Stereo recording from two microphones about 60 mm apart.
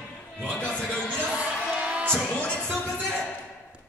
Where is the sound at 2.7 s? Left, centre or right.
Centre.